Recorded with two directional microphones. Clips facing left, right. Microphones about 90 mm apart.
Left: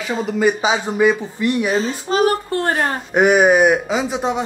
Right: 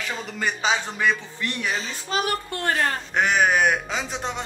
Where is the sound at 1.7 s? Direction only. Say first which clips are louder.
Left 9 dB; 35° left (ahead or behind).